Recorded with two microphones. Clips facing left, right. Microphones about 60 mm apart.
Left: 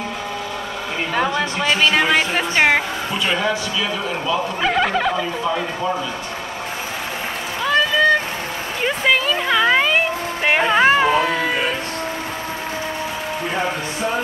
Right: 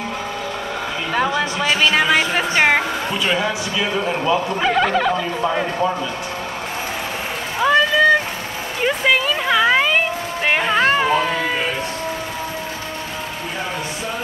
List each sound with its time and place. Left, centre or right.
1.3 s speech: centre
4.6 s speech: centre
7.6 s a sound: centre